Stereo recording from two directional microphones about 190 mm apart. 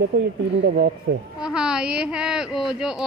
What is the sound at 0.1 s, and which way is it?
Speech, 60° right (ahead or behind).